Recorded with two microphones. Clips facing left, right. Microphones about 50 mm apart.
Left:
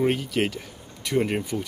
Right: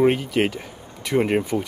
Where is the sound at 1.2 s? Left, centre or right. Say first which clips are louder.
Right 4 dB; centre.